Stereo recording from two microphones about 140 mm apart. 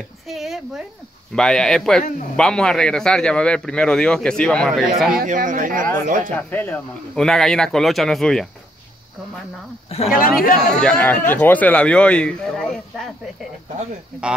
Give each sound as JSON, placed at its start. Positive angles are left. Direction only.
{"t": 0.3, "sound": "a sound", "side_deg": 0}
{"t": 1.3, "sound": "a man's voice", "side_deg": 5}
{"t": 5.1, "sound": "speech", "side_deg": -70}
{"t": 6.3, "sound": "a man's voice", "side_deg": 15}
{"t": 10.1, "sound": "a man's voice", "side_deg": 90}
{"t": 10.7, "sound": "a man's voice", "side_deg": 5}